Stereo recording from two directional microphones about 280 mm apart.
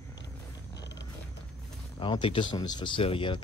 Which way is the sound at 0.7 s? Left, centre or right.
Left.